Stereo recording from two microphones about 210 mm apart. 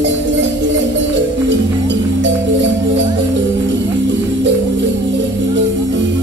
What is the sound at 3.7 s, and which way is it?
Music, 60° right (ahead or behind).